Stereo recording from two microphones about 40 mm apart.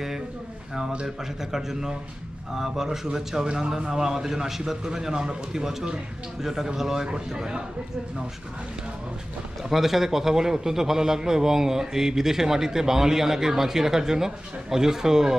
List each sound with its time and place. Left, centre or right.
1.0 s a man's voice: centre
9.7 s a man's voice: centre